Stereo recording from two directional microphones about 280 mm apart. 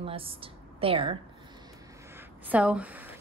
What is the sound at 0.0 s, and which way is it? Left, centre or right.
A woman's voice, centre.